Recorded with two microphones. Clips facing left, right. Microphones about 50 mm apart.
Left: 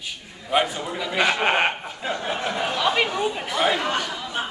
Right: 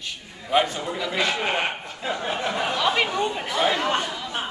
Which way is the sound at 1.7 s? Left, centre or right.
Centre.